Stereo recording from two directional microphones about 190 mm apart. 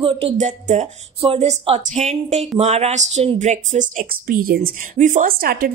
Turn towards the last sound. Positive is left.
turn(degrees=-50)  # may be behind; listen again after turning